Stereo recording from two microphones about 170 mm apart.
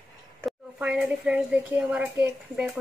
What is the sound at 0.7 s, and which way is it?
Speech, 10° right (ahead or behind).